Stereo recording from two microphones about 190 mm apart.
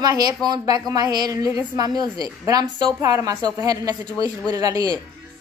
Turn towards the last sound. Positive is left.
turn(degrees=-20)  # may be behind; listen again after turning